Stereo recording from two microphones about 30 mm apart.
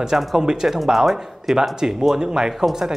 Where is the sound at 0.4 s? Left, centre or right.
Right.